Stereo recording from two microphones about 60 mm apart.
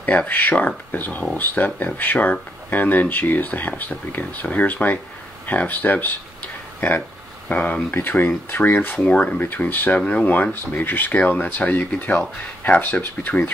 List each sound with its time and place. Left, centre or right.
0.0 s speech: left
7.9 s speech: left
9.0 s speech: centre
9.4 s speech: left